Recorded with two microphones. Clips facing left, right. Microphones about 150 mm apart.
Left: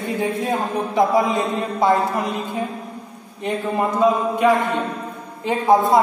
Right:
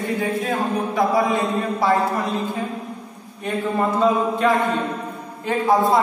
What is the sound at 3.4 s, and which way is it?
A man's voice, 15° left (ahead or behind).